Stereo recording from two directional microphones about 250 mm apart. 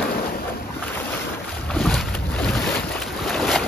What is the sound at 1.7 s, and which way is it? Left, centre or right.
Boat, centre.